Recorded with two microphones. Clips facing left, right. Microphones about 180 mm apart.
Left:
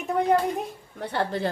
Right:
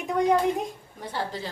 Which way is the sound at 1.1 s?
60° left (ahead or behind).